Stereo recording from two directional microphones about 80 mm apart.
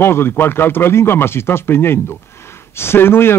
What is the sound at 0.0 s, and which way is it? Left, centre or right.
Speech, left.